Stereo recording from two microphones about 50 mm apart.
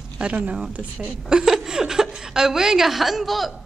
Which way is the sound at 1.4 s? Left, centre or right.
Centre.